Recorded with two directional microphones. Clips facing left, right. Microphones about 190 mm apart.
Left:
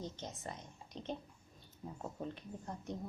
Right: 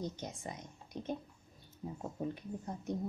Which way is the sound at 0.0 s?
10° right (ahead or behind).